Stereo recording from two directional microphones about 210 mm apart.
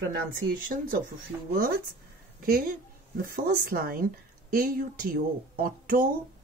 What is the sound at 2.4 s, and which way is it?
Speech, 45° right (ahead or behind).